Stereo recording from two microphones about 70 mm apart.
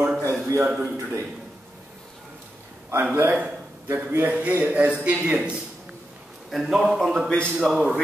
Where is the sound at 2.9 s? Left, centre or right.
Right.